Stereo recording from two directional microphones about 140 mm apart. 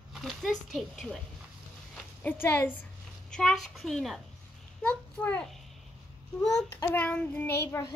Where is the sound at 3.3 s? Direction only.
5° left (ahead or behind).